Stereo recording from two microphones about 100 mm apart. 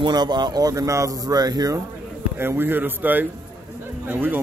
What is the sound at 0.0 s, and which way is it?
Speech, 45° right (ahead or behind).